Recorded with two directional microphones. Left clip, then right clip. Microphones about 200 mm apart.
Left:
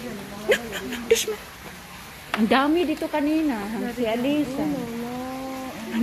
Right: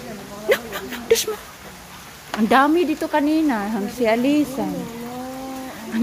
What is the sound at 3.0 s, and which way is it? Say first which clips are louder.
Speech: right 4 dB; 25° right (ahead or behind).